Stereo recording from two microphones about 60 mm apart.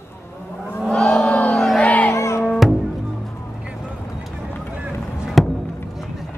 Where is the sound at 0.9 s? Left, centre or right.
Centre.